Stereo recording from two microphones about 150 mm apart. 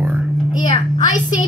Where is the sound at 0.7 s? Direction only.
55° left (ahead or behind).